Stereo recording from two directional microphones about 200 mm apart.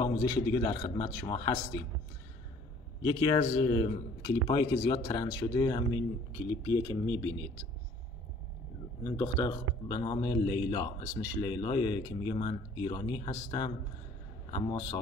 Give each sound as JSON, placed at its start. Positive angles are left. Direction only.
{"t": 0.0, "sound": "speech", "side_deg": 20}
{"t": 3.0, "sound": "speech", "side_deg": 25}
{"t": 9.0, "sound": "speech", "side_deg": 15}